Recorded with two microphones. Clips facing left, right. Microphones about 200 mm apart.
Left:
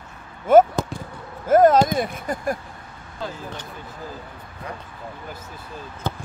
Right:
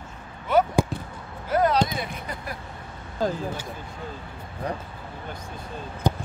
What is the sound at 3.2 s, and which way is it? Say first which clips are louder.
Speech: right 7 dB; 40° right (ahead or behind).